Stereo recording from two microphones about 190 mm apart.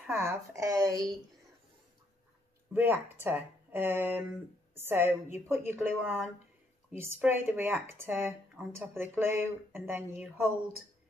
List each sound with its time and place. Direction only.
0.0 s speech: 15° right (ahead or behind)
2.7 s speech: 10° right (ahead or behind)